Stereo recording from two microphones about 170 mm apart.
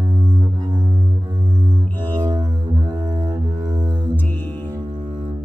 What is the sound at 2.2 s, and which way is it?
Music, 25° right (ahead or behind).